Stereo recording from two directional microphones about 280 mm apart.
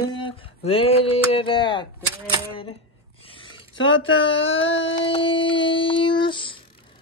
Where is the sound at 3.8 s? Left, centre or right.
Left.